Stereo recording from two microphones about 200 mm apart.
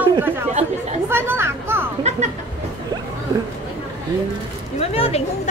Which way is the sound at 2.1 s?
35° right (ahead or behind).